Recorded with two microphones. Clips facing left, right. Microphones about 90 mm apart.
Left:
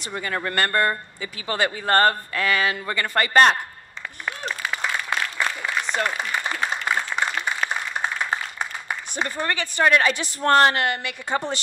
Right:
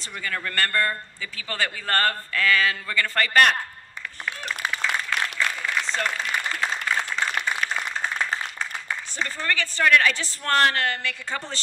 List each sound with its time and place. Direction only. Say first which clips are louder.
0.0 s speech: left 4 dB; 20° left (ahead or behind)
4.3 s applause: left 1 dB; 20° left (ahead or behind)
7.2 s a sound: left 1 dB; 20° left (ahead or behind)
8.2 s a woman's voice: left 1 dB; 15° left (ahead or behind)